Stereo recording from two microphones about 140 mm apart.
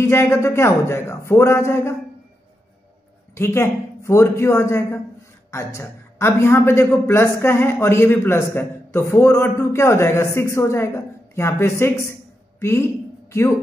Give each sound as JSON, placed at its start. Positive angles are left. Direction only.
{"t": 0.0, "sound": "a man's voice", "side_deg": 20}
{"t": 3.3, "sound": "a man's voice", "side_deg": 15}
{"t": 12.5, "sound": "a sound", "side_deg": 20}